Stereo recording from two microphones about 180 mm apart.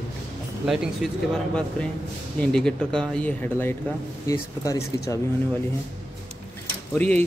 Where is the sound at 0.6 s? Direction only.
5° right (ahead or behind).